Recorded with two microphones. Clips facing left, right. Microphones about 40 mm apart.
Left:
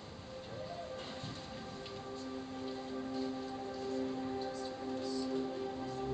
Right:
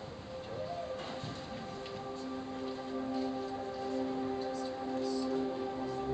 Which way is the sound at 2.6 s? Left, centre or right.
Centre.